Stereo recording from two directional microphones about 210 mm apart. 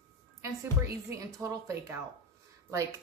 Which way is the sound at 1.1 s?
15° right (ahead or behind).